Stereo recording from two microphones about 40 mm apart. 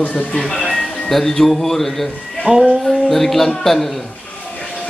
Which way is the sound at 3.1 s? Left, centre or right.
Centre.